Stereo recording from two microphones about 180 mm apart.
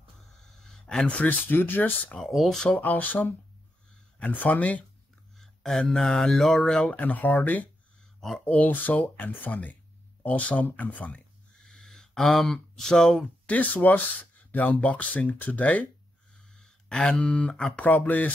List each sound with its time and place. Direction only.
0.6 s speech: 5° left (ahead or behind)